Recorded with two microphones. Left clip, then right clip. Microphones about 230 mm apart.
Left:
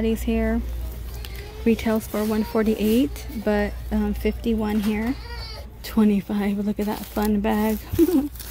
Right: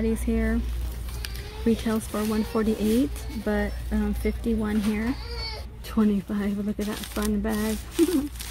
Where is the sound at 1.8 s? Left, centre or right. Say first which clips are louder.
Left 4 dB; centre.